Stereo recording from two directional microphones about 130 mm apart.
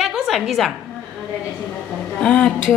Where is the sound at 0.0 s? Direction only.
Centre (ahead or behind).